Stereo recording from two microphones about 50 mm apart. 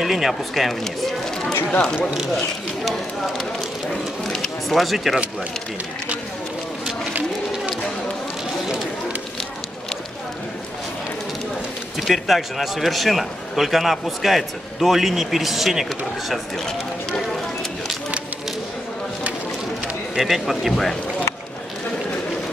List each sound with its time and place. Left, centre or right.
0.0 s a man's voice: centre
1.7 s speech: centre
4.2 s a sound: centre
4.6 s a man's voice: centre
12.0 s a man's voice: centre
20.2 s a man's voice: centre